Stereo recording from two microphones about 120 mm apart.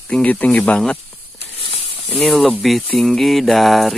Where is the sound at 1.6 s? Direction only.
55° left (ahead or behind).